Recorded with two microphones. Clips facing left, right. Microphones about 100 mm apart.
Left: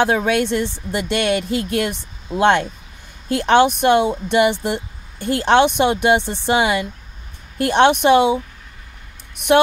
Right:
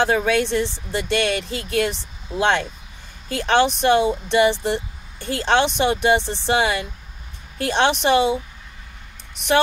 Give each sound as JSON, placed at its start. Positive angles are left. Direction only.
{"t": 0.0, "sound": "speech", "side_deg": 55}